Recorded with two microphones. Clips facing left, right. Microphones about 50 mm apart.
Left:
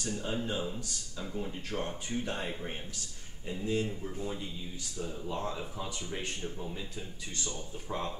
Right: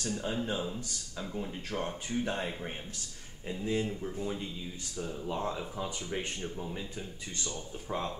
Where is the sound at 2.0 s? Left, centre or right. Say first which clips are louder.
Right 2 dB; right.